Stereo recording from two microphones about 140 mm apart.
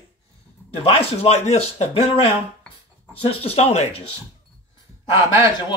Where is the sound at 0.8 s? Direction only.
45° left (ahead or behind).